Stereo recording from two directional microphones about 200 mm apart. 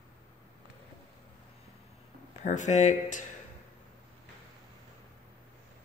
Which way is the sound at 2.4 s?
40° left (ahead or behind).